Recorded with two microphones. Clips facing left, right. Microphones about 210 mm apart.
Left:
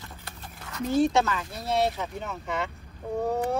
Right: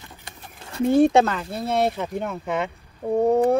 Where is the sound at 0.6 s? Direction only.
30° right (ahead or behind).